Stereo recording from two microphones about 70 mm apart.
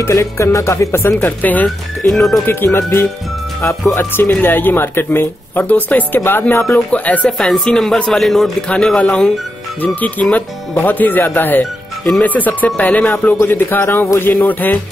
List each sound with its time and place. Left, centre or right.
0.0 s speech: left
1.4 s speech: left
2.0 s a man's voice: centre
2.4 s speech: left
7.2 s a man's voice: centre
8.6 s speech: centre
13.4 s speech: left